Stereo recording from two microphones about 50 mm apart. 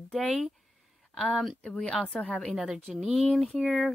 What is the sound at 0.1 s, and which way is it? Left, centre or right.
Speech, centre.